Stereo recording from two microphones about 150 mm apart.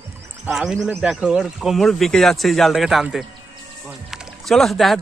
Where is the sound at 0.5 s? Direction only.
Centre (ahead or behind).